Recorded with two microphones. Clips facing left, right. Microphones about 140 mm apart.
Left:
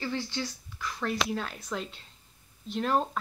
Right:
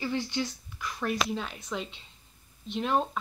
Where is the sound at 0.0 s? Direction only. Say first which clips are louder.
Right 2 dB; 15° right (ahead or behind).